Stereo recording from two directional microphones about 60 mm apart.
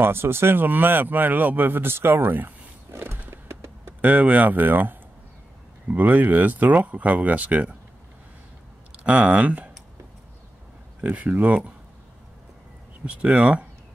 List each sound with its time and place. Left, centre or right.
0.0 s speech: right
3.3 s a sound: right
4.0 s speech: right
8.9 s speech: centre
11.0 s speech: right
13.0 s speech: right